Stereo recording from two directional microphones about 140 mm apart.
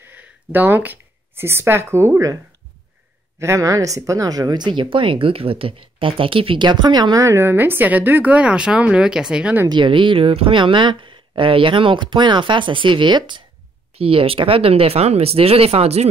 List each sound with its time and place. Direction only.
0.0 s a woman's voice: 15° right (ahead or behind)
3.3 s a woman's voice: 20° right (ahead or behind)
9.7 s speech: 35° right (ahead or behind)